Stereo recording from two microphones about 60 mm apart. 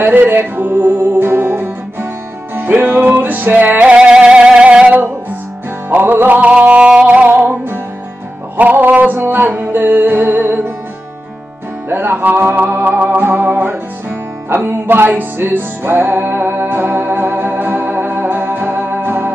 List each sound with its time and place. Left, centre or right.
0.0 s music: right; by 4.9 s centre
5.9 s music: right
6.6 s music: right
11.9 s music: right